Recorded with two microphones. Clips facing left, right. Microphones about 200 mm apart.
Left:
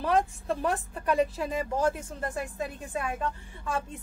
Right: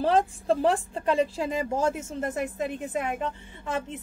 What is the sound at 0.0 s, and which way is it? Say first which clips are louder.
A woman's voice: right 3 dB; 30° right (ahead or behind).